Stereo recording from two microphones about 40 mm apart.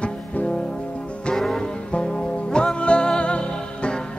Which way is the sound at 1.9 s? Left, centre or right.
Left.